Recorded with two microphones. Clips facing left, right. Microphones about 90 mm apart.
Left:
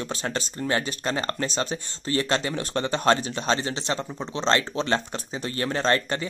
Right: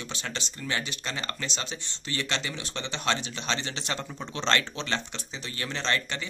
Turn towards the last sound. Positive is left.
turn(degrees=40)  # may be behind; listen again after turning